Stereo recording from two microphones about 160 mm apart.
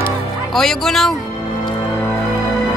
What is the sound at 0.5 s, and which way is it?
Speech, centre (ahead or behind).